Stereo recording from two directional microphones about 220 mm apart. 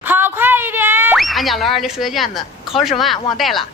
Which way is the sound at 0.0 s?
10° right (ahead or behind).